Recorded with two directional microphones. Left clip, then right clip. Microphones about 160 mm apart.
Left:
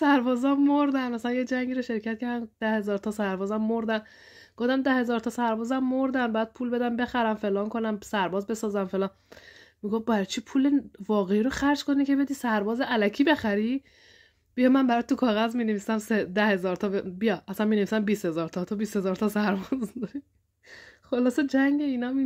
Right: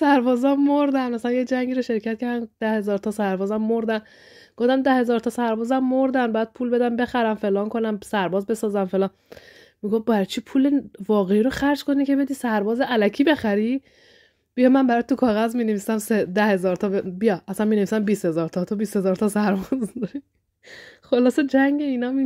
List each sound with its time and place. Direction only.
0.0 s speech: 40° right (ahead or behind)